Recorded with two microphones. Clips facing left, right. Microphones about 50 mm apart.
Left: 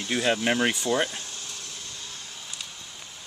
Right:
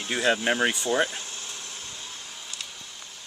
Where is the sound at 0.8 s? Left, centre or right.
Right.